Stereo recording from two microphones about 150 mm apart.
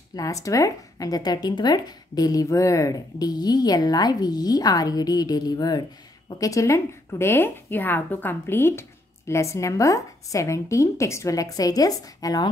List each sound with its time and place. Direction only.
0.1 s a woman's voice: 20° left (ahead or behind)